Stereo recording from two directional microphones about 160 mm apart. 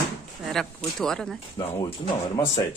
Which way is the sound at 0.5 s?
Centre (ahead or behind).